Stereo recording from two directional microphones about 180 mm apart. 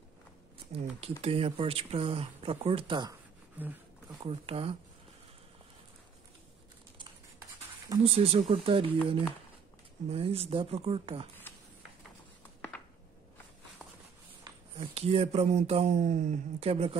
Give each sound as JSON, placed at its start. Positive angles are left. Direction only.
{"t": 0.7, "sound": "speech", "side_deg": -35}
{"t": 8.0, "sound": "speech", "side_deg": -35}
{"t": 10.0, "sound": "speech", "side_deg": -35}
{"t": 11.5, "sound": "a sound", "side_deg": 10}
{"t": 14.4, "sound": "speech", "side_deg": -30}